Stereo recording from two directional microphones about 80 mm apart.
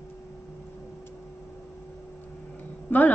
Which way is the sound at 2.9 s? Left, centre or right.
Centre.